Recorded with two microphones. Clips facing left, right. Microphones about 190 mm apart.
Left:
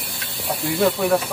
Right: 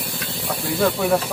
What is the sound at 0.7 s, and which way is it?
Speech, centre (ahead or behind).